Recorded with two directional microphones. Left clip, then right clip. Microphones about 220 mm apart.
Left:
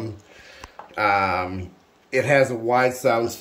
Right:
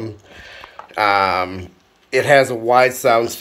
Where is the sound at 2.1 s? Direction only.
5° left (ahead or behind).